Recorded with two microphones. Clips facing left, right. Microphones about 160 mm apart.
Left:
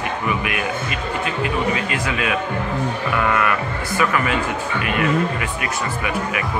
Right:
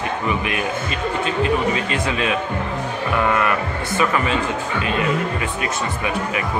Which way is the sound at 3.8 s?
25° right (ahead or behind).